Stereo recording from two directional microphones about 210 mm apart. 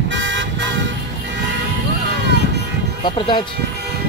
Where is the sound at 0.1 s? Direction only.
60° right (ahead or behind).